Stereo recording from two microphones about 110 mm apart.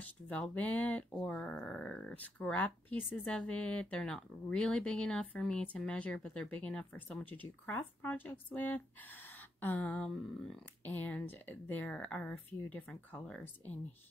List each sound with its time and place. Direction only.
0.0 s speech: 10° left (ahead or behind)